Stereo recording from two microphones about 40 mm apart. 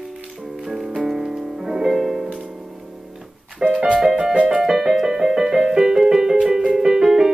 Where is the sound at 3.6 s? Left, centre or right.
Centre.